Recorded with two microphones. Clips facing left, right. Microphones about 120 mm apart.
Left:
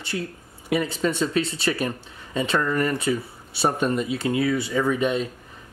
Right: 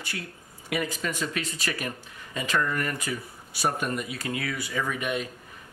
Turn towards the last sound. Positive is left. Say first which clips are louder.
# left 7 dB
turn(degrees=30)  # may be behind; listen again after turning